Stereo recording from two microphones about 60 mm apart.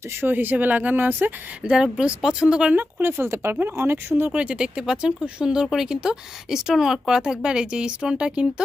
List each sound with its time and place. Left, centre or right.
0.1 s speech: right
1.6 s speech: centre
3.0 s speech: right
4.3 s speech: centre